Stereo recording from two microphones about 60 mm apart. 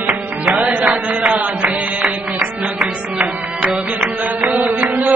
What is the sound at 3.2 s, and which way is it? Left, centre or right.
Music, right.